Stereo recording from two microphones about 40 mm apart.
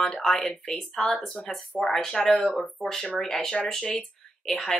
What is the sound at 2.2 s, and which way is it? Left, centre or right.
Speech, left.